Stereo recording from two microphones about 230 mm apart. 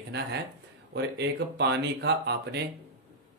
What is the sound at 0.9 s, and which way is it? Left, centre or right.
Speech, right.